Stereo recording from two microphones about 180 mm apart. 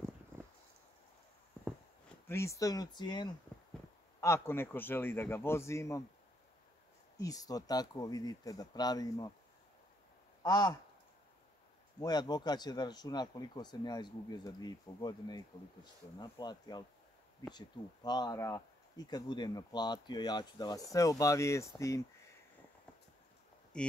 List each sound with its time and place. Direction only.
0.3 s a sound: 10° right (ahead or behind)
2.2 s a man's voice: 15° left (ahead or behind)
7.2 s speech: 20° left (ahead or behind)
10.4 s speech: 20° left (ahead or behind)
12.0 s speech: 20° left (ahead or behind)
23.7 s speech: 5° left (ahead or behind)